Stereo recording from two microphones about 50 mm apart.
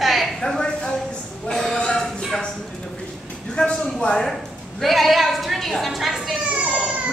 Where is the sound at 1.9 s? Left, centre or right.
Centre.